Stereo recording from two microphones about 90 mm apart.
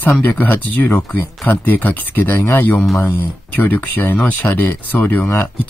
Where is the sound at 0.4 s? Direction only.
20° left (ahead or behind).